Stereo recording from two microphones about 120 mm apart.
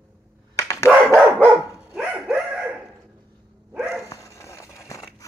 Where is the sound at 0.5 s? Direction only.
25° left (ahead or behind).